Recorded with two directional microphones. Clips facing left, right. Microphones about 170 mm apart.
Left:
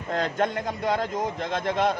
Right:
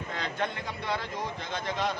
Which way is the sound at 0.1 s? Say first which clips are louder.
Left 9 dB; 45° left (ahead or behind).